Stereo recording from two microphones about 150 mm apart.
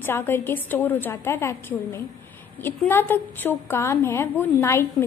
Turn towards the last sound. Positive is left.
turn(degrees=15)  # may be behind; listen again after turning